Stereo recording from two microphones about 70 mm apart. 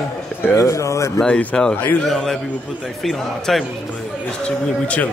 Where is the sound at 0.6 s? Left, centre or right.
Left.